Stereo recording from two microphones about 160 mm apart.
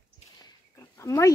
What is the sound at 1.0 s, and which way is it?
Speech, 20° left (ahead or behind).